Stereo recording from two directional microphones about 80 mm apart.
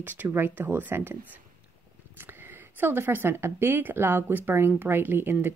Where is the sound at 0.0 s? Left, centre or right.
Right.